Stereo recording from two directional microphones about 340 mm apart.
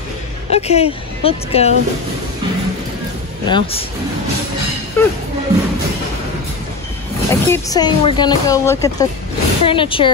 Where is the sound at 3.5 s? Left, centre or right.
Centre.